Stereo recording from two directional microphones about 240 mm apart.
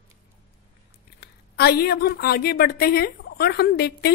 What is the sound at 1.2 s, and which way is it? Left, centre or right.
A woman's voice, left.